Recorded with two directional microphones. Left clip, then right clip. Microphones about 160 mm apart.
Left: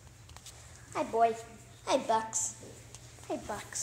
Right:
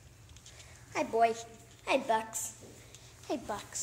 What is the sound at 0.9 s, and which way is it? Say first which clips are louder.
Speech: even; 30° right (ahead or behind).